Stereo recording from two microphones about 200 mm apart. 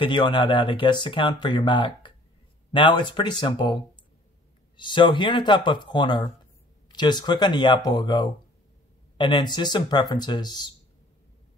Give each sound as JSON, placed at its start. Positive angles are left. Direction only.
{"t": 0.0, "sound": "speech", "side_deg": 25}
{"t": 4.7, "sound": "speech", "side_deg": 25}